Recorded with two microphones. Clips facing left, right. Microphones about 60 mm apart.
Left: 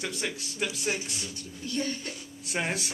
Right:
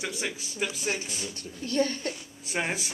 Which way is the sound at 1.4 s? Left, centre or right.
Right.